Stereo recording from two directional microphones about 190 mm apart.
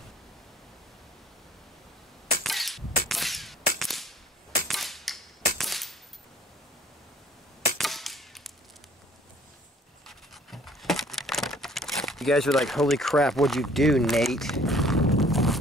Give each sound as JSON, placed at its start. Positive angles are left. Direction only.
{"t": 2.4, "sound": "a sound", "side_deg": 0}
{"t": 4.6, "sound": "cap gun", "side_deg": 0}
{"t": 7.7, "sound": "chop", "side_deg": 0}
{"t": 10.0, "sound": "crumpling", "side_deg": 0}